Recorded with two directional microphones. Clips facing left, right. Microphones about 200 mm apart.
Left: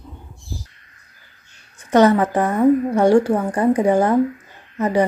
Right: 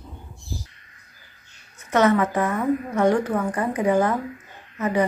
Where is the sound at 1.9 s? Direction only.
35° left (ahead or behind).